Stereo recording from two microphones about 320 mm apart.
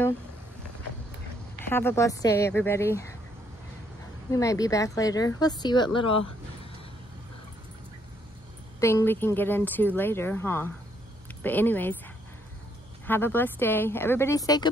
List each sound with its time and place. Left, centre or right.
1.7 s speech: centre
4.3 s speech: centre
8.7 s speech: centre
13.0 s speech: centre